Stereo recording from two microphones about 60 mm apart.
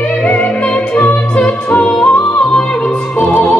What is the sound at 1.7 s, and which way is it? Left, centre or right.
Music, centre.